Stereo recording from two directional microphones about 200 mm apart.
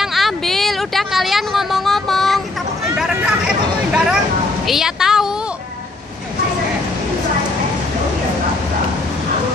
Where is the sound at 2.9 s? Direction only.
5° right (ahead or behind).